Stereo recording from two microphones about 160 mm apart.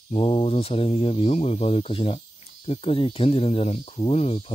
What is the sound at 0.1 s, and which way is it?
Speech, 35° left (ahead or behind).